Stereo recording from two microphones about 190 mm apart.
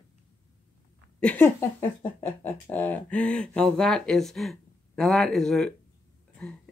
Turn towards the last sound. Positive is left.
turn(degrees=0)  # may be behind; listen again after turning